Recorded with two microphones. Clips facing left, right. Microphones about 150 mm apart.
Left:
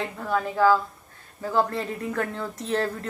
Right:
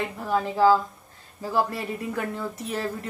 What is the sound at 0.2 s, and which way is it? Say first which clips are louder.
A woman's voice: right 1 dB; 15° right (ahead or behind).